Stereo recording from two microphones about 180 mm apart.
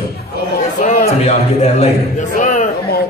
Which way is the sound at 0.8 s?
50° left (ahead or behind).